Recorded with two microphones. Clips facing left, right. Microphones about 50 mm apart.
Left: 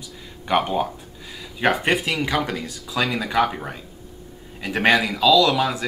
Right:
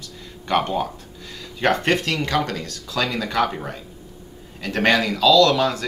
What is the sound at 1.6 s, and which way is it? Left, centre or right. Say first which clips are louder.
Speech: even; centre.